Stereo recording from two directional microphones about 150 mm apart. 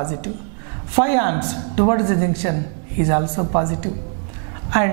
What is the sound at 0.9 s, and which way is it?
A woman's voice, 5° right (ahead or behind).